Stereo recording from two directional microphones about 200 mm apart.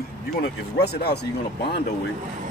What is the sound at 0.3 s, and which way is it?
Speech, 55° left (ahead or behind).